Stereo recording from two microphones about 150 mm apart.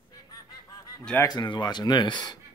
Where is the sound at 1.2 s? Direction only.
30° left (ahead or behind).